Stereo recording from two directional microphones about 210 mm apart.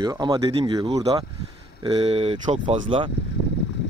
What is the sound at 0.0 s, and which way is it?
Speech, 15° right (ahead or behind).